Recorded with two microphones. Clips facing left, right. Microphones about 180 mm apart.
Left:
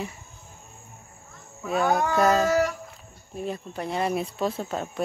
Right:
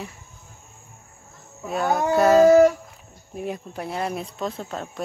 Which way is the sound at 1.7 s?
Centre (ahead or behind).